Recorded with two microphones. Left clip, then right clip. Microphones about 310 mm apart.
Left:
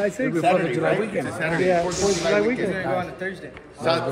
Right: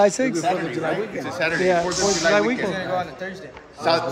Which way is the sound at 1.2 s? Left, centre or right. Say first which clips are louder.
Right 2 dB; right.